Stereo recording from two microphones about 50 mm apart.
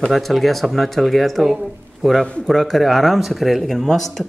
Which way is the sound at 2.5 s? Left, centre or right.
Centre.